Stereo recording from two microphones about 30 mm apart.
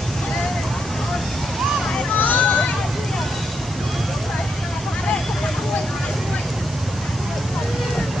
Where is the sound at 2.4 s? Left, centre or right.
Left.